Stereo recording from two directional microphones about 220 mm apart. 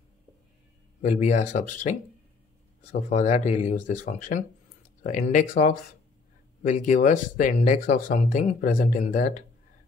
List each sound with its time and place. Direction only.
1.0 s speech: 30° left (ahead or behind)